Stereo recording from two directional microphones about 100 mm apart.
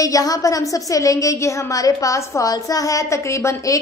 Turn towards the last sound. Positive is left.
turn(degrees=30)  # may be behind; listen again after turning